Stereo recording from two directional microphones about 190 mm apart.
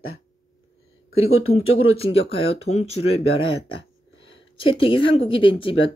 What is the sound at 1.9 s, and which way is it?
Speech, 30° left (ahead or behind).